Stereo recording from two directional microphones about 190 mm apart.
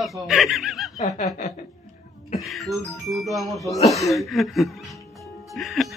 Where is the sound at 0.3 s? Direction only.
Centre (ahead or behind).